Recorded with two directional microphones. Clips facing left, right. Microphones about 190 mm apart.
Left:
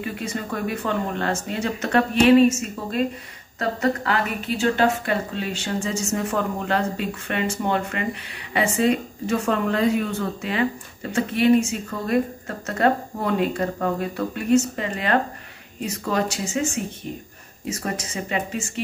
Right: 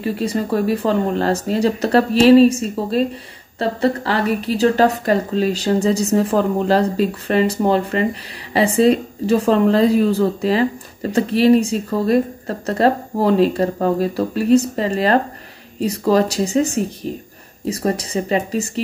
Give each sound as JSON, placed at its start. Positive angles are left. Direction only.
{"t": 0.0, "sound": "speech", "side_deg": -35}